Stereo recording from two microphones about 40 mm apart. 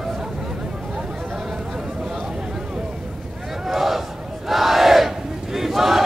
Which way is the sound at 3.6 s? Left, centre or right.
Centre.